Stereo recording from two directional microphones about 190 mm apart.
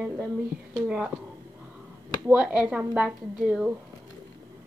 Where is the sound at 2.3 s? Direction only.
5° right (ahead or behind).